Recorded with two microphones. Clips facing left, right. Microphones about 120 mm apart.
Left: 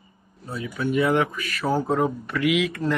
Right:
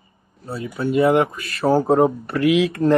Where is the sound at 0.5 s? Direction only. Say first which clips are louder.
Right 4 dB; 35° right (ahead or behind).